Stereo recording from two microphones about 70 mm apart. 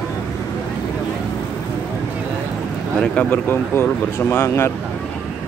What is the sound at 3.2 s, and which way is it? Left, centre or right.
Speech, left.